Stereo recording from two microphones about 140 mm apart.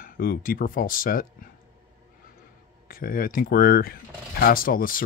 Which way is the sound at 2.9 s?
90° left.